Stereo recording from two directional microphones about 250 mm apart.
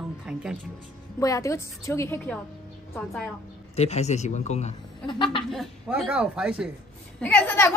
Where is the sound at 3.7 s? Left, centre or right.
Left.